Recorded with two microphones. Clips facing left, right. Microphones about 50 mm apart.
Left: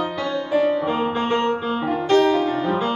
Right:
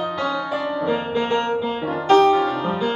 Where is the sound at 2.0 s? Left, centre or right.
Right.